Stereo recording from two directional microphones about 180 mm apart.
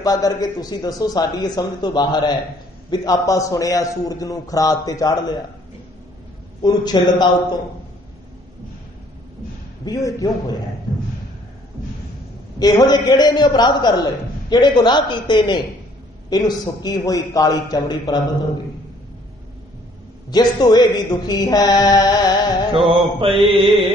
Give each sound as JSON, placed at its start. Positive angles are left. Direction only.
{"t": 0.0, "sound": "a man's voice", "side_deg": 20}
{"t": 6.6, "sound": "a man's voice", "side_deg": 20}
{"t": 9.8, "sound": "a man's voice", "side_deg": 20}
{"t": 12.5, "sound": "a man's voice", "side_deg": 20}
{"t": 20.2, "sound": "a man's voice", "side_deg": 25}
{"t": 22.7, "sound": "mantra", "side_deg": -30}